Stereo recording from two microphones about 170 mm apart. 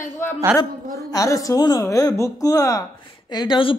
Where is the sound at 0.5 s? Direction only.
20° left (ahead or behind).